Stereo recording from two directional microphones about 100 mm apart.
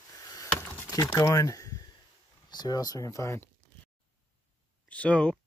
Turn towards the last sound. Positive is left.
turn(degrees=10)  # may be behind; listen again after turning